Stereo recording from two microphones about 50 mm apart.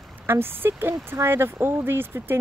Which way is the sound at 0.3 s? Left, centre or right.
Right.